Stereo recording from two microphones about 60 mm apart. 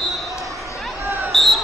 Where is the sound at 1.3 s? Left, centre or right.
Centre.